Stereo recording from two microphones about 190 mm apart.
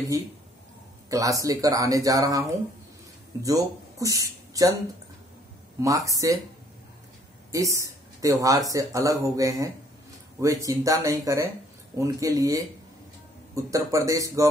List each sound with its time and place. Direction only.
1.1 s speech: 20° right (ahead or behind)
3.4 s speech: 15° right (ahead or behind)
5.8 s speech: 15° right (ahead or behind)
7.5 s speech: 15° right (ahead or behind)
13.7 s speech: 15° right (ahead or behind)